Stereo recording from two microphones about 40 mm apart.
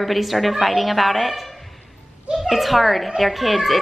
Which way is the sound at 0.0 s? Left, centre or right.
Centre.